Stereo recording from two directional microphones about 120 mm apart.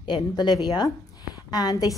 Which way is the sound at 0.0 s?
40° left (ahead or behind).